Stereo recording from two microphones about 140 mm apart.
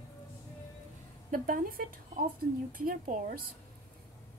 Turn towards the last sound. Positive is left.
turn(degrees=-85)